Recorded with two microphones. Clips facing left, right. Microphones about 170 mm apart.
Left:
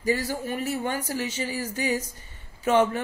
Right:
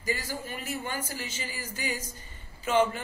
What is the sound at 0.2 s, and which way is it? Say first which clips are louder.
Speech: left 8 dB; 65° left (ahead or behind).